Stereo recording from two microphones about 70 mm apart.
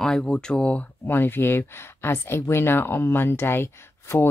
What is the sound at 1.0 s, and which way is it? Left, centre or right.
Speech, left.